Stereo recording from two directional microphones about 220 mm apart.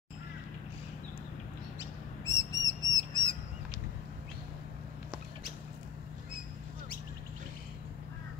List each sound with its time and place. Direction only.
2.2 s bird flight: 15° left (ahead or behind)